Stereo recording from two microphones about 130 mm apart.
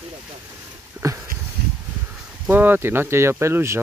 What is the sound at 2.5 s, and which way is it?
Speech, 15° right (ahead or behind).